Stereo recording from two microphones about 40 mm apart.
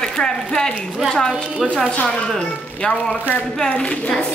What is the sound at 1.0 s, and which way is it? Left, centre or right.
Speech, centre.